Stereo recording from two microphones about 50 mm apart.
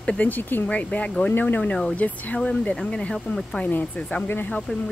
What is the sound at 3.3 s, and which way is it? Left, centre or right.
Speech, left.